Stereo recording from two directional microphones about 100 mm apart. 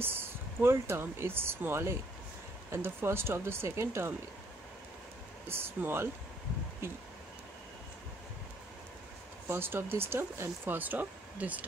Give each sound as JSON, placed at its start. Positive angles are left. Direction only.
{"t": 0.6, "sound": "speech", "side_deg": -25}
{"t": 5.5, "sound": "speech", "side_deg": -25}
{"t": 9.5, "sound": "speech", "side_deg": -25}